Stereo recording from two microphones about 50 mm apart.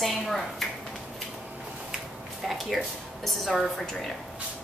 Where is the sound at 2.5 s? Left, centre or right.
Centre.